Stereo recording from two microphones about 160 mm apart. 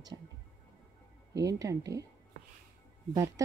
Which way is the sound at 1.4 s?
20° right (ahead or behind).